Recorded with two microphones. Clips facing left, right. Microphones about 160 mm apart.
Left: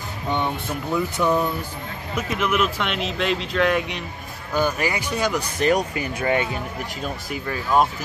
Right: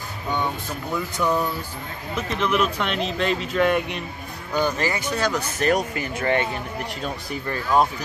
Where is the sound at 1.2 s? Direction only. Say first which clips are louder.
Even; 15° left (ahead or behind); by 4.0 s centre (ahead or behind).